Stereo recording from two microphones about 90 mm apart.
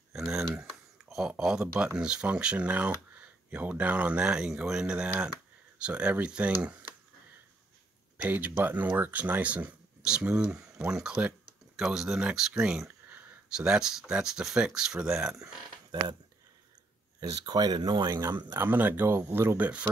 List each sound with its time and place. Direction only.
0.1 s a sound: 5° right (ahead or behind)
1.4 s speech: 5° right (ahead or behind)
8.2 s speech: 20° right (ahead or behind)
15.9 s speech: 50° right (ahead or behind)
17.2 s speech: 45° right (ahead or behind)
18.5 s speech: 25° right (ahead or behind)